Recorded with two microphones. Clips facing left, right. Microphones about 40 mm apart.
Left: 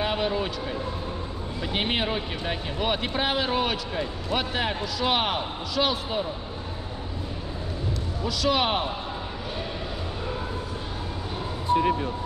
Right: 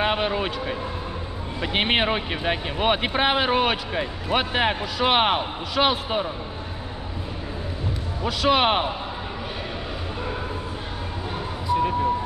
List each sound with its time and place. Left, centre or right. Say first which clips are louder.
0.0 s vehicle: right 3 dB; right
1.6 s speech: right 5 dB; right
8.2 s speech: right 4 dB; right